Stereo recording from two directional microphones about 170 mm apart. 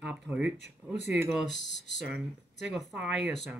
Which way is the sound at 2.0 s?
5° right (ahead or behind).